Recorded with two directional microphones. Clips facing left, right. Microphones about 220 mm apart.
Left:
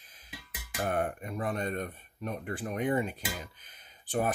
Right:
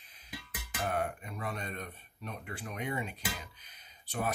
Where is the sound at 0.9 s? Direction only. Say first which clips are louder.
Left 3 dB; 50° left (ahead or behind).